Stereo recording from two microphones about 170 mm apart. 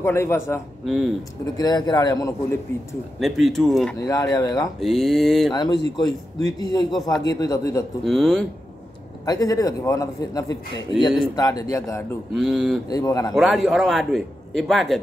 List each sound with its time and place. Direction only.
0.0 s a man's voice: 15° left (ahead or behind)
0.8 s a man's voice: centre (ahead or behind)
1.6 s a man's voice: 25° left (ahead or behind)
3.2 s a man's voice: centre (ahead or behind)
4.0 s a man's voice: 20° left (ahead or behind)
4.7 s a man's voice: centre (ahead or behind)
5.5 s a man's voice: 25° left (ahead or behind)
8.0 s a man's voice: centre (ahead or behind)
9.2 s a man's voice: 20° left (ahead or behind)
12.4 s a man's voice: centre (ahead or behind)
12.9 s a man's voice: 20° left (ahead or behind)
13.3 s a man's voice: centre (ahead or behind)